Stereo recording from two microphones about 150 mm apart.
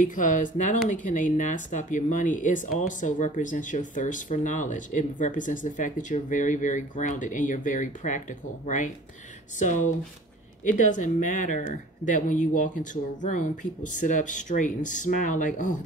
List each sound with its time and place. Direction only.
0.0 s speech: 60° left (ahead or behind)